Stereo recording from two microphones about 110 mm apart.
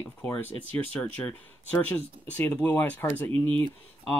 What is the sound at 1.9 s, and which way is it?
Speech, 15° left (ahead or behind).